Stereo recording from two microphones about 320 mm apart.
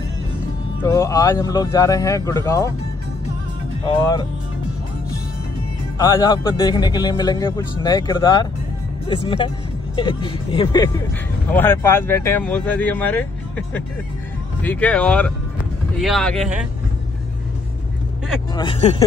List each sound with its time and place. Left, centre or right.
0.8 s a man's voice: centre
3.8 s a man's voice: centre
5.9 s a man's voice: centre
18.5 s a man's voice: centre